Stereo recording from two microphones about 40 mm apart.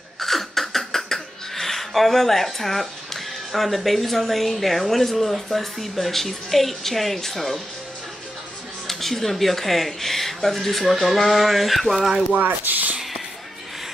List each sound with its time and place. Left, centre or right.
0.2 s speech: centre
8.8 s speech: centre
12.4 s speech: right